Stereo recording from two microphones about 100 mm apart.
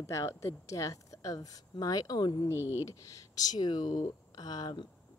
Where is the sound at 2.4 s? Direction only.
25° left (ahead or behind); by 4.8 s 45° left (ahead or behind).